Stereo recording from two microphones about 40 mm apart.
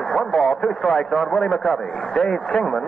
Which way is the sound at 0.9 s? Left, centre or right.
Centre.